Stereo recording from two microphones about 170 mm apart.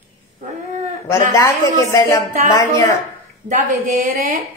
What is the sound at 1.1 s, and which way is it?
A woman's voice, 15° left (ahead or behind).